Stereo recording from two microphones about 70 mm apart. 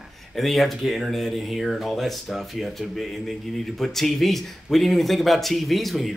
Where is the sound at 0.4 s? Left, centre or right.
Centre.